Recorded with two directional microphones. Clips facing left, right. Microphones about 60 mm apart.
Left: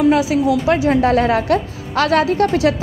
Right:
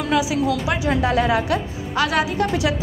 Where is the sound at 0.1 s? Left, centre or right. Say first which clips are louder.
Left 5 dB; left.